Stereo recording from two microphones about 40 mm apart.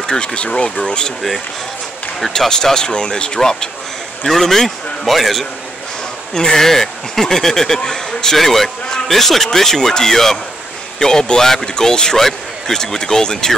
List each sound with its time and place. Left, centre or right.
0.0 s speech: left
2.1 s speech: centre
4.3 s a man's voice: centre
6.3 s speech: centre
8.4 s a man's voice: centre